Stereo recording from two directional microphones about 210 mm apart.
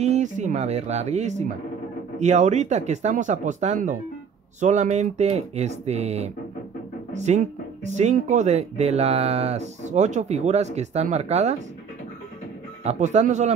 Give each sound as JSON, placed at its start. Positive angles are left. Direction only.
{"t": 0.0, "sound": "speech", "side_deg": -35}
{"t": 12.8, "sound": "speech", "side_deg": -35}